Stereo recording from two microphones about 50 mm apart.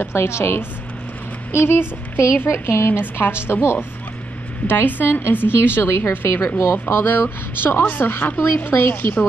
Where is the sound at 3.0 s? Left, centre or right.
Left.